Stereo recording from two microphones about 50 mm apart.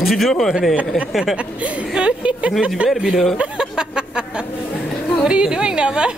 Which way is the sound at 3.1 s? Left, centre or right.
Centre.